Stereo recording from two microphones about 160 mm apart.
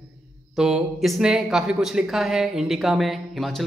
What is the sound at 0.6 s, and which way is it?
Speech, 5° right (ahead or behind).